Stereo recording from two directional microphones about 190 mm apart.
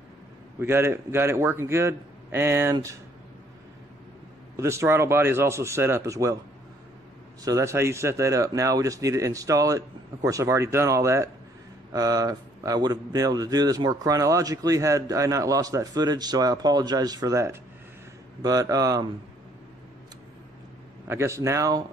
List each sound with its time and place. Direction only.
0.6 s speech: 10° right (ahead or behind)
4.6 s speech: 15° right (ahead or behind)
7.4 s speech: 15° right (ahead or behind)
21.1 s speech: 15° right (ahead or behind)